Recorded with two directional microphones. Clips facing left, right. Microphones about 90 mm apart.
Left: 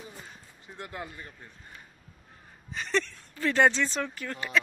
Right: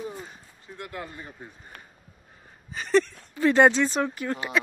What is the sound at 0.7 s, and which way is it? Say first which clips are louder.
Speech: right 2 dB; 25° left (ahead or behind).